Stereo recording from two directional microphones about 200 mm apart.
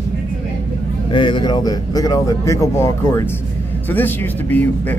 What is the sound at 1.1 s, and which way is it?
Speech, 25° left (ahead or behind).